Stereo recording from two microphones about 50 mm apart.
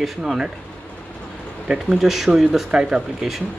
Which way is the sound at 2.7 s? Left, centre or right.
Centre.